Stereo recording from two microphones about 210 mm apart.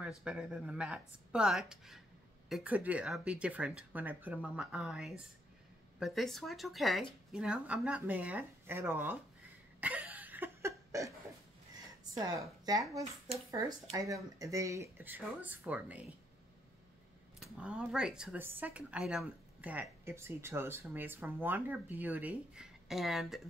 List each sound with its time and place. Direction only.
0.2 s speech: 5° right (ahead or behind)
9.8 s cough: 5° right (ahead or behind)
12.0 s a woman's voice: 20° right (ahead or behind)
17.4 s speech: 5° right (ahead or behind)